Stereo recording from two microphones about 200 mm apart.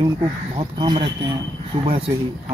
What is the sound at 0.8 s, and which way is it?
Speech, 25° right (ahead or behind).